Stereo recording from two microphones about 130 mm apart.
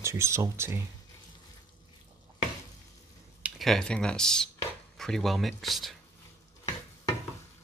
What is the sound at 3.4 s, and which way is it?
Speech, centre (ahead or behind).